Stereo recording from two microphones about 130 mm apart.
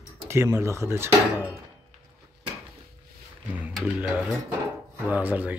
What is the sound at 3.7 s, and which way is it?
Speech, 10° right (ahead or behind).